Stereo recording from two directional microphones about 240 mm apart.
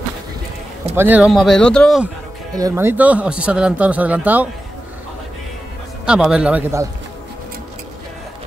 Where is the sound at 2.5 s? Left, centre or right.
Centre.